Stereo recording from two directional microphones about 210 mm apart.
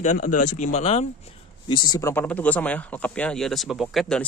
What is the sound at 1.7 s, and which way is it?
Speech, 20° left (ahead or behind).